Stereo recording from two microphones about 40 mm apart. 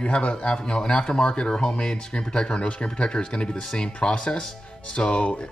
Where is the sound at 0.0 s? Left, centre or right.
Left.